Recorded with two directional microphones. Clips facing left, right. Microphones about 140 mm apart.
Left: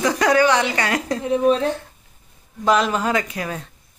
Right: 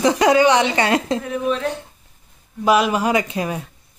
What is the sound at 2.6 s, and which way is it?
Speech, 10° right (ahead or behind).